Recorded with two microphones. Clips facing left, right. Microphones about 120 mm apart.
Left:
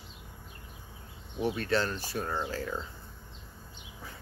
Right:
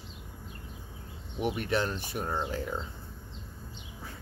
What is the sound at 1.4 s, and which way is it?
Speech, 15° right (ahead or behind).